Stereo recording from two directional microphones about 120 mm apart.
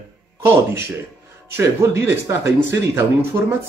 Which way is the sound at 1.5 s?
25° right (ahead or behind).